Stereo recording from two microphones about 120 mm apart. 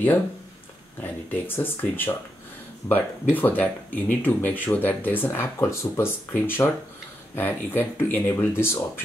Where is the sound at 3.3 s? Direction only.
15° left (ahead or behind).